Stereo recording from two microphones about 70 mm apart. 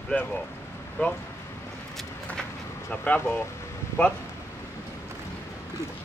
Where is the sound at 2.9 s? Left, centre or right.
Left.